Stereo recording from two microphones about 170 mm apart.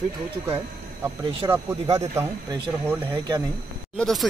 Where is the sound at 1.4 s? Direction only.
25° right (ahead or behind).